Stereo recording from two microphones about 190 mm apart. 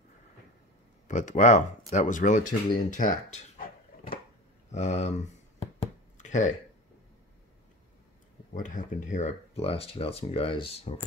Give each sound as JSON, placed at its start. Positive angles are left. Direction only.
{"t": 1.0, "sound": "speech", "side_deg": 40}
{"t": 4.6, "sound": "speech", "side_deg": 35}
{"t": 5.6, "sound": "chopping", "side_deg": 35}
{"t": 8.5, "sound": "speech", "side_deg": 40}